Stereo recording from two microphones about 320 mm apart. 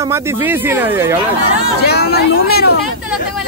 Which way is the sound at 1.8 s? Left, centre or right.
Left.